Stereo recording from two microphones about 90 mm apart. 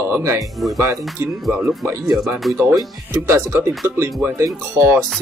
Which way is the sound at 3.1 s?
30° right (ahead or behind).